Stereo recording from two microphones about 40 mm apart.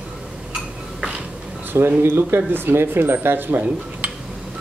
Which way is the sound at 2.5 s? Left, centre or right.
Right.